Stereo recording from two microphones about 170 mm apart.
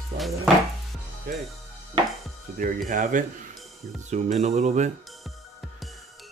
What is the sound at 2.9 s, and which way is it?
Speech, 50° right (ahead or behind).